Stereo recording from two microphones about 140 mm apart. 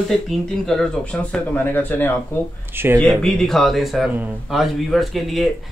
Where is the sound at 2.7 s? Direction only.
15° right (ahead or behind).